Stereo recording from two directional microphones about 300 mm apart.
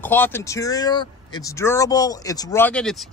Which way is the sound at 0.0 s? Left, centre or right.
Centre.